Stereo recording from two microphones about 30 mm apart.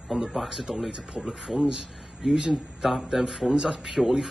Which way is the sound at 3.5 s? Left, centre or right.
Centre.